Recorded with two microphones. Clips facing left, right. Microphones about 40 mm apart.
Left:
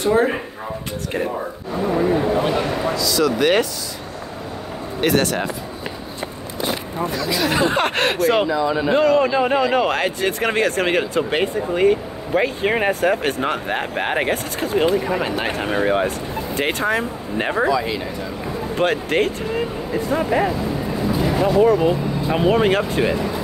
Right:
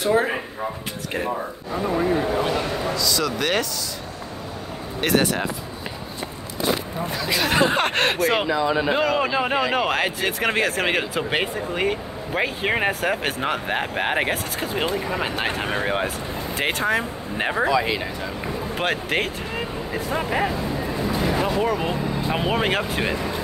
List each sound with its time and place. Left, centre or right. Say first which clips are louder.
0.0 s speech: left 3 dB; centre
2.4 s speech: left 3 dB; centre
3.0 s speech: left 7 dB; centre
5.0 s speech: left 2 dB; centre
7.2 s speech: left 1 dB; right
7.7 s speech: left 2 dB; centre
8.5 s speech: left 2 dB; right
8.9 s speech: left 5 dB; centre
17.6 s speech: left 1 dB; right
18.8 s speech: left 5 dB; centre